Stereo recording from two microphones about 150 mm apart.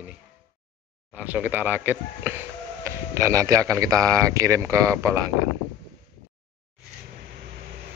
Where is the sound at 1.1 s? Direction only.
10° right (ahead or behind).